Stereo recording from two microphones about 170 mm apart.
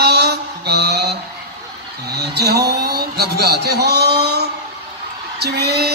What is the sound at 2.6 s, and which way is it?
Speech, 65° right (ahead or behind).